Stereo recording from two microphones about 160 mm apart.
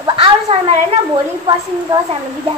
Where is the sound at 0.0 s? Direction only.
30° right (ahead or behind).